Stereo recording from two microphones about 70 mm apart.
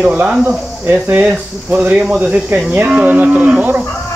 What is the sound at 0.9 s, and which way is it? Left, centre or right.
Speech, right.